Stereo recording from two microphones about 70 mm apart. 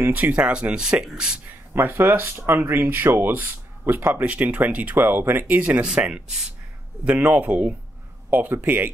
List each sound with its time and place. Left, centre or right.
0.1 s speech: centre
1.4 s speech: right